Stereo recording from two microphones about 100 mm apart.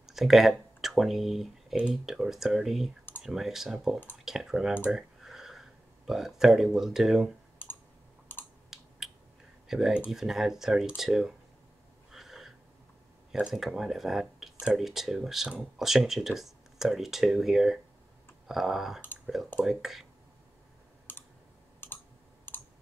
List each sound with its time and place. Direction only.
0.0 s speech: 5° right (ahead or behind)
4.9 s a sound: 5° right (ahead or behind)
7.6 s clicking: 20° left (ahead or behind)
8.3 s typing: 20° left (ahead or behind)
8.7 s a sound: 5° right (ahead or behind)
9.7 s speech: 5° right (ahead or behind)
12.1 s snort: 5° right (ahead or behind)
13.3 s speech: 5° right (ahead or behind)
21.1 s clicking: 20° left (ahead or behind)
22.5 s clicking: 20° left (ahead or behind)